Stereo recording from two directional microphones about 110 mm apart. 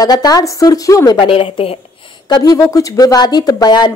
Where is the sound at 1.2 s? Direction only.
60° left (ahead or behind).